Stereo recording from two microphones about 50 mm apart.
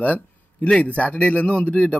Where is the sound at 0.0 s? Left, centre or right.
Left.